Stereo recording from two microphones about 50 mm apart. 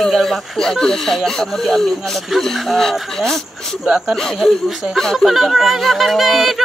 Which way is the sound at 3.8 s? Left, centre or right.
Centre.